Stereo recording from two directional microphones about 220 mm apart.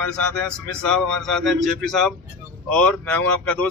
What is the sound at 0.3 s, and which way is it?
Speech, 5° left (ahead or behind).